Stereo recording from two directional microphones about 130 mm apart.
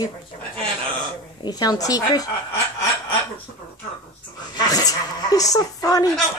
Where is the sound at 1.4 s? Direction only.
30° left (ahead or behind).